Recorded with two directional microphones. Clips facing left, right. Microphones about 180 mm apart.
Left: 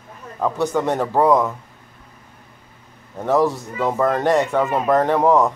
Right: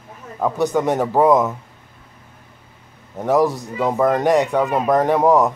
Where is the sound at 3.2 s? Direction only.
15° right (ahead or behind).